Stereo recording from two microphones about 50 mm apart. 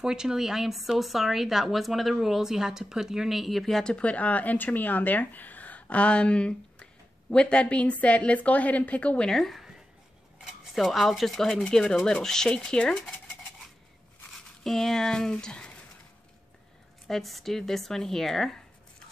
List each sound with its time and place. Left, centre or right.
0.0 s a woman's voice: centre
3.8 s speech: left
9.2 s speech: centre
14.3 s speech: centre
17.1 s speech: centre